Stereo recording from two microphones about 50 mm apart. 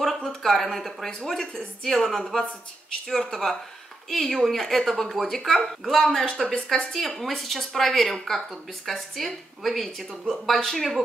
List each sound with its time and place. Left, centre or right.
0.2 s a woman's voice: centre